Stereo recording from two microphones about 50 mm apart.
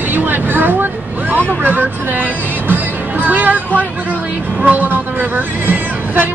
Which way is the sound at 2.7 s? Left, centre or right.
Right.